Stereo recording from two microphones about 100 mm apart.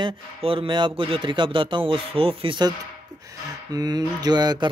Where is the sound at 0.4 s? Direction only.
65° right (ahead or behind).